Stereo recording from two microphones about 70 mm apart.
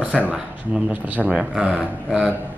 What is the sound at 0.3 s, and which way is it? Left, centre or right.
Speech, centre.